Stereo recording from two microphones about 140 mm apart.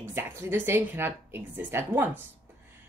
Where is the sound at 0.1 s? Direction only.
15° right (ahead or behind).